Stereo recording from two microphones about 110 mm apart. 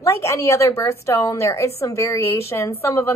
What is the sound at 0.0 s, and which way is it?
A woman's voice, 25° left (ahead or behind).